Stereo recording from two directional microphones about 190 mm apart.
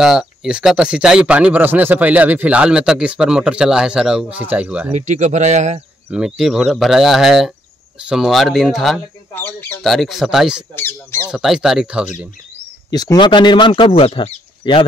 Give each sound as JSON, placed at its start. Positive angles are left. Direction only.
{"t": 0.0, "sound": "speech", "side_deg": -5}
{"t": 4.9, "sound": "speech", "side_deg": -40}
{"t": 6.0, "sound": "speech", "side_deg": -5}
{"t": 9.9, "sound": "speech", "side_deg": 0}
{"t": 10.8, "sound": "speech", "side_deg": 15}
{"t": 11.3, "sound": "speech", "side_deg": 0}
{"t": 12.9, "sound": "speech", "side_deg": 20}